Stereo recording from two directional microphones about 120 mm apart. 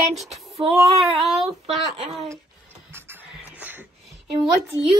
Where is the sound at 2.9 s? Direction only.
20° right (ahead or behind).